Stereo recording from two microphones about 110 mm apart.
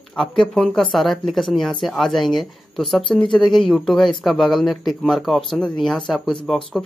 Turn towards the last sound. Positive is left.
turn(degrees=0)  # may be behind; listen again after turning